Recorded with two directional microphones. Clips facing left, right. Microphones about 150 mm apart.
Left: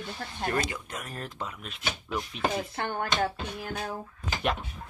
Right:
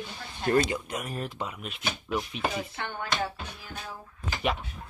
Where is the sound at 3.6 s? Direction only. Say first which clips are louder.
Left 9 dB; 50° left (ahead or behind).